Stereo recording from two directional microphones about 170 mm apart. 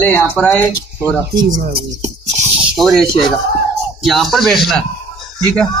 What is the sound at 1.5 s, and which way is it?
Speech, 60° right (ahead or behind).